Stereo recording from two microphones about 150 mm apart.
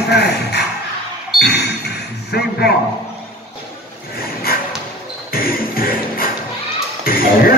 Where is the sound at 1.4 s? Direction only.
90° left.